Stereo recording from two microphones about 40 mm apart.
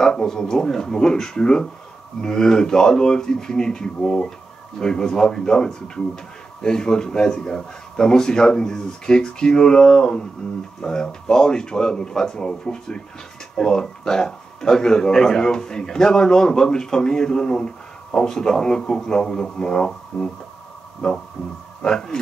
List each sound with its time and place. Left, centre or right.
0.0 s speech: centre
21.8 s speech: centre